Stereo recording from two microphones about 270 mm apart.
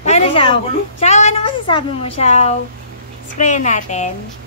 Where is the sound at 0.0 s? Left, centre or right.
Left.